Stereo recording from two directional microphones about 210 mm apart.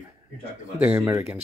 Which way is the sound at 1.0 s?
10° right (ahead or behind).